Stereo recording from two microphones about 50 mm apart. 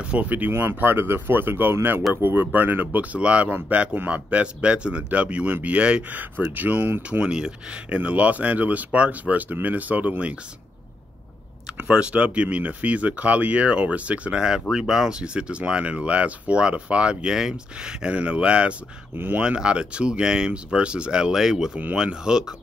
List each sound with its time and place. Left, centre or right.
0.0 s speech: right
0.5 s speech: right
2.4 s speech: right
6.0 s speech: right
7.3 s speech: centre
7.9 s speech: right
11.9 s speech: right
19.1 s speech: right
19.4 s speech: centre